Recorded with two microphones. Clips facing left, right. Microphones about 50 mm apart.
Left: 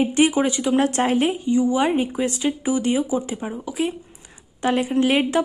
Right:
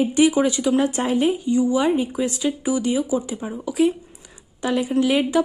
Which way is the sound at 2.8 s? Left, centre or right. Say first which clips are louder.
Left 1 dB; left.